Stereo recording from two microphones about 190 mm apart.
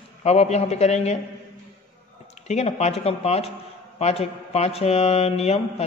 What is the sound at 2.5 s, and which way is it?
Speech, 35° left (ahead or behind).